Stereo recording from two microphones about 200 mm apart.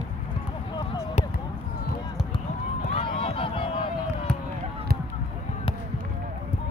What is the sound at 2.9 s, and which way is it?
Run, 25° left (ahead or behind).